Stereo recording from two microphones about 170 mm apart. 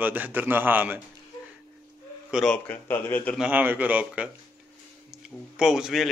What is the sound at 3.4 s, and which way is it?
Speech, 10° right (ahead or behind).